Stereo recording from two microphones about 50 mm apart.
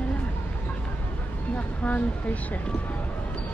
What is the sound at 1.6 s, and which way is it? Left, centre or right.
Speech, left.